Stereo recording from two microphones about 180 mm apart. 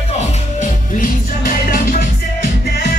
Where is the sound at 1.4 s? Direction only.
50° left (ahead or behind).